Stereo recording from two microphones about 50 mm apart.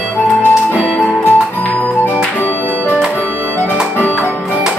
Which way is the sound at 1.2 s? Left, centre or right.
Left.